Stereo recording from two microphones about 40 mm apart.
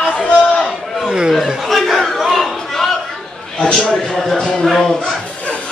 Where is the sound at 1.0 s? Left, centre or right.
Centre.